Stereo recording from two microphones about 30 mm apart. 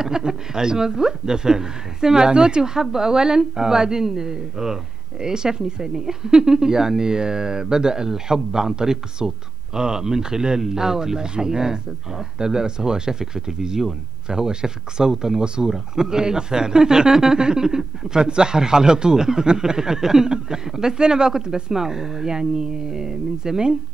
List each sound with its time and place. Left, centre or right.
0.0 s speech: centre